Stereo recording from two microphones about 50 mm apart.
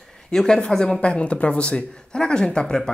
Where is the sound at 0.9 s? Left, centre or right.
Left.